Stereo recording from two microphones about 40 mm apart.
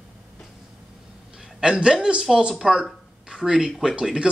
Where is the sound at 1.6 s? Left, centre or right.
Right.